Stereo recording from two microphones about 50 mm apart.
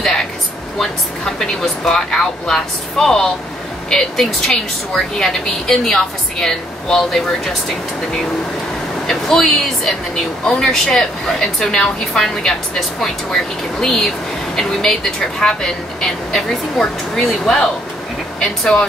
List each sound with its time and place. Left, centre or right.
0.7 s speech: centre
9.0 s speech: centre